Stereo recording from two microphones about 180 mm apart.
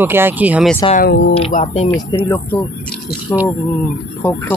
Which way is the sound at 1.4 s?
35° left (ahead or behind).